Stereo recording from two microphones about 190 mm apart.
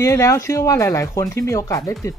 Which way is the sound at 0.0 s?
15° left (ahead or behind).